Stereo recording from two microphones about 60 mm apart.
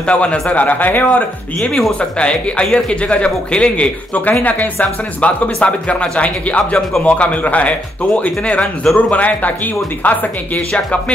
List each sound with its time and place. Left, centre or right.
0.0 s speech: centre
1.6 s speech: centre
2.0 s speech: centre